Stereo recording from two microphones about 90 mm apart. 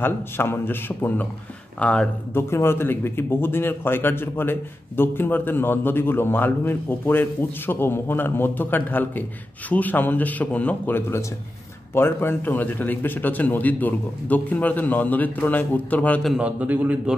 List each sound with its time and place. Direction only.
0.0 s speech: 25° left (ahead or behind)
2.3 s speech: 30° left (ahead or behind)
16.3 s a man's voice: 15° right (ahead or behind)